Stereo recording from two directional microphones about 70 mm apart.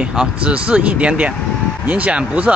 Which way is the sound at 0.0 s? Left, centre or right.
Centre.